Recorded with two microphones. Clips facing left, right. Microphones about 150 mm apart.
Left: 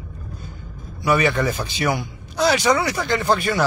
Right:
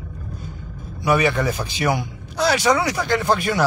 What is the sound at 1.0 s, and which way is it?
Speech, 10° right (ahead or behind).